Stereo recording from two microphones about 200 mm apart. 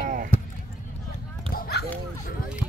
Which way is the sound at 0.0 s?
45° right (ahead or behind).